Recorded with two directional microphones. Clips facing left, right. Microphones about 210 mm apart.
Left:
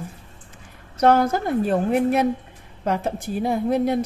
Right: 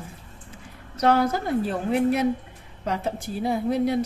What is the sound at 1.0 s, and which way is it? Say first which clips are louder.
A woman's voice: left 3 dB; 45° left (ahead or behind).